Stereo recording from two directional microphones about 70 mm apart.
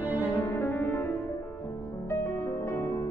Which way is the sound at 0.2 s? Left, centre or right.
Left.